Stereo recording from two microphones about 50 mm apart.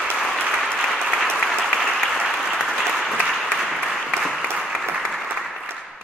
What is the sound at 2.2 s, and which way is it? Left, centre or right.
Applause, centre.